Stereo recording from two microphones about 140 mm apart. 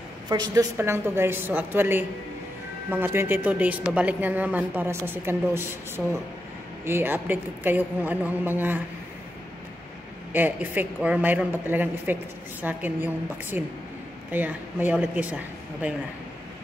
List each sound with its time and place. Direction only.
0.3 s a woman's voice: 25° right (ahead or behind)
10.3 s a woman's voice: 15° right (ahead or behind)